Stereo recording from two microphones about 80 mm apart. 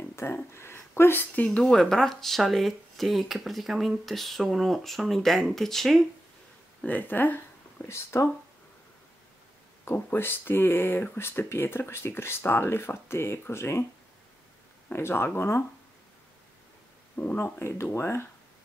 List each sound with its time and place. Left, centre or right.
0.1 s a sound: left
0.5 s speech: left
1.6 s speech: centre
6.8 s speech: left
7.9 s speech: left
9.8 s speech: left
14.9 s speech: left
17.1 s speech: left